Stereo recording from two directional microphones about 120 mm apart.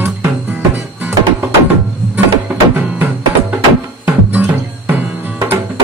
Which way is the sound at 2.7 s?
15° right (ahead or behind).